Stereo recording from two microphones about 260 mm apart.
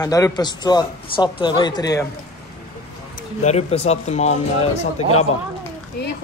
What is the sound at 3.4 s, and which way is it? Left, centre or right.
Speech, left.